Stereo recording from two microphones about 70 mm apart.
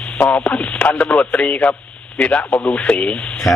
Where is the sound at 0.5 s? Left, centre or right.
Centre.